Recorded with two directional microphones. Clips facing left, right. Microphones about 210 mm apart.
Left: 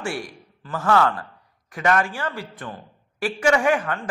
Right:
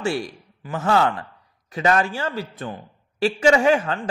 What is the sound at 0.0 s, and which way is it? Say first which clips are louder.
Speech: right 5 dB; 25° right (ahead or behind).